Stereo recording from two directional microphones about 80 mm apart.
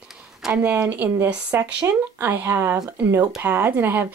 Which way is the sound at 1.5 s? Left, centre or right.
Right.